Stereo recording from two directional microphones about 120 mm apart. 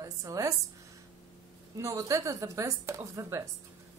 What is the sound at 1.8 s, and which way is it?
Speech, 25° right (ahead or behind).